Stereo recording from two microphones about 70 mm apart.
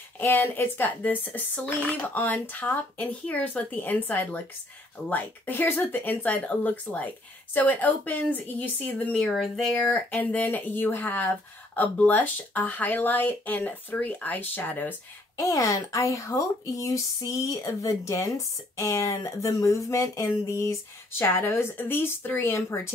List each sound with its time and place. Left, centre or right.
0.2 s speech: left
9.1 s speech: centre
9.8 s speech: left
15.3 s speech: left
21.2 s speech: left